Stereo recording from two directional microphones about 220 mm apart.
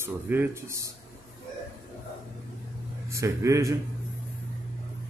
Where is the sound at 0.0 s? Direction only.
10° right (ahead or behind).